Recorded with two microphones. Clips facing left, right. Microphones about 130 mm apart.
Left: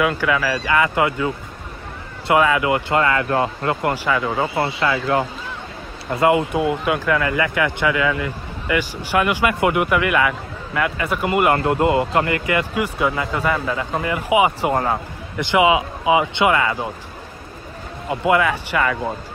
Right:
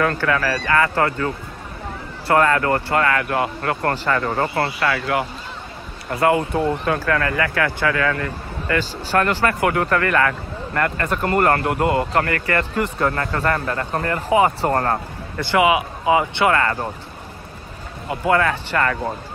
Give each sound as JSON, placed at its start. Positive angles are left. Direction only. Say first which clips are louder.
{"t": 0.0, "sound": "speech", "louder": "even", "side_deg": 10}
{"t": 2.3, "sound": "speech", "louder": "even", "side_deg": 10}
{"t": 3.8, "sound": "speech", "louder": "right 1 dB", "side_deg": 10}
{"t": 4.6, "sound": "speech", "louder": "left 1 dB", "side_deg": 20}
{"t": 11.6, "sound": "speech", "louder": "left 2 dB", "side_deg": 20}
{"t": 15.4, "sound": "speech", "louder": "left 1 dB", "side_deg": 20}
{"t": 18.1, "sound": "speech", "louder": "left 1 dB", "side_deg": 15}